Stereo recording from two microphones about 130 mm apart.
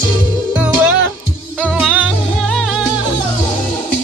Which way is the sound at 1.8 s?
5° right (ahead or behind).